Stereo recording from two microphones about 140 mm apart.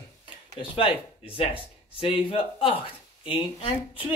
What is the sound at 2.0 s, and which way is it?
Speech, 40° left (ahead or behind).